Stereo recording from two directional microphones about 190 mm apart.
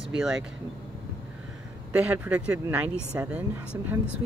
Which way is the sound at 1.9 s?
10° right (ahead or behind).